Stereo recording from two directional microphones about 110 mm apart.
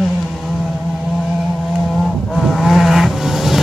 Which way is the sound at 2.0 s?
Centre (ahead or behind).